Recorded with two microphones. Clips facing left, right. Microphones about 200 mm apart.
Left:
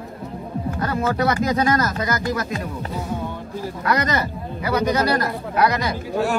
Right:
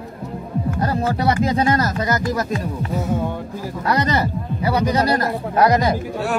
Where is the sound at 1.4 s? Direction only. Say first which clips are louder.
Right 1 dB; 30° right (ahead or behind).